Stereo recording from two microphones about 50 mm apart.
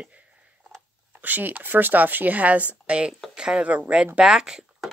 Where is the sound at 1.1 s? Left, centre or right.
Right; by 4.6 s centre.